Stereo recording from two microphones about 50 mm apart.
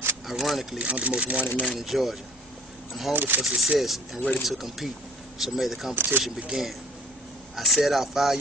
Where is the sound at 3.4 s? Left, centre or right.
Centre.